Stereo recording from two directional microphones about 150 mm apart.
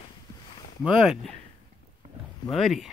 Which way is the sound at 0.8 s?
5° right (ahead or behind).